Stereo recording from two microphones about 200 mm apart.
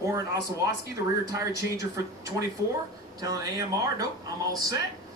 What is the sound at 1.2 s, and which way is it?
Speech, 15° right (ahead or behind).